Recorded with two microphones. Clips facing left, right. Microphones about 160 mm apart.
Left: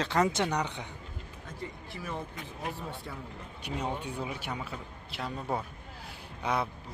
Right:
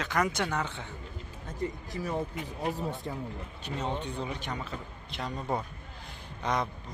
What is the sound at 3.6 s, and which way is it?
A man's voice, 10° left (ahead or behind).